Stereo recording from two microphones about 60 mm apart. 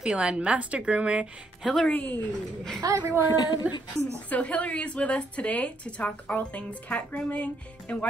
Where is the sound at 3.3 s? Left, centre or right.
Left.